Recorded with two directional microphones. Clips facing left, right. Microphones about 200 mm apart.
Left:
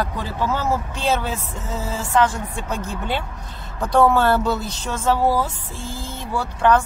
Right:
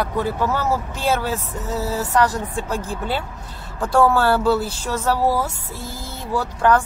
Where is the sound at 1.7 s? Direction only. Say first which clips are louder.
Right 3 dB; 35° right (ahead or behind).